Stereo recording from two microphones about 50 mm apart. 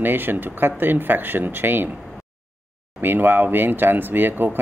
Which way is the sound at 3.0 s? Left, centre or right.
Right.